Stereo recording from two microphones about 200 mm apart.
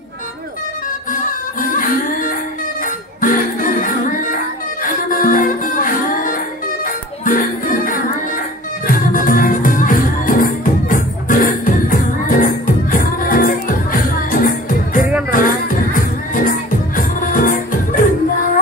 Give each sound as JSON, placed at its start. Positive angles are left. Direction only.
{"t": 1.6, "sound": "music", "side_deg": 45}